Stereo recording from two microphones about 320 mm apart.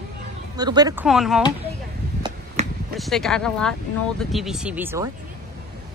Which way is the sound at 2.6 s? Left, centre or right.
Right.